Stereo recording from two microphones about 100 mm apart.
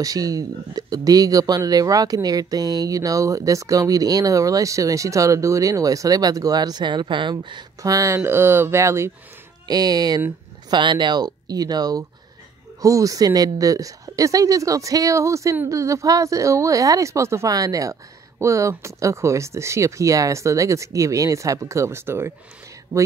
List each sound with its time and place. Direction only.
0.0 s speech: 40° right (ahead or behind)
7.9 s speech: 30° right (ahead or behind)
9.7 s speech: 40° right (ahead or behind); by 22.3 s 25° right (ahead or behind)